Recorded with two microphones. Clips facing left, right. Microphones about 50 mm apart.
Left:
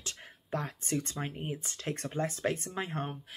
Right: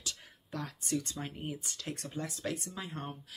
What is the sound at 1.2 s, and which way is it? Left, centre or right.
Speech, left.